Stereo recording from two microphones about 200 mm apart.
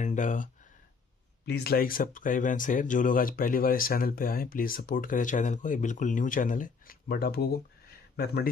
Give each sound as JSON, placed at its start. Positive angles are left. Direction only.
{"t": 0.0, "sound": "speech", "side_deg": 40}
{"t": 1.4, "sound": "speech", "side_deg": 55}